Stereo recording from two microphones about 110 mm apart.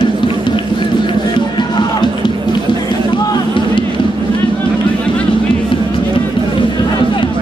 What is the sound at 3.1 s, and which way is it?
Music, 40° left (ahead or behind).